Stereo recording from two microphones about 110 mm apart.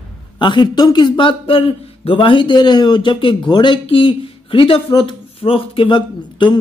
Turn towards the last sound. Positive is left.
turn(degrees=50)  # may be behind; listen again after turning